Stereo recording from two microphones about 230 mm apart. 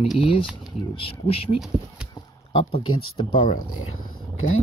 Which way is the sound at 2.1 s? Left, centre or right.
Left.